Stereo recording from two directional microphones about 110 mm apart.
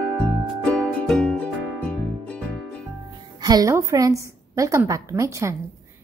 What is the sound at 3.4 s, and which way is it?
A woman's voice, 30° right (ahead or behind).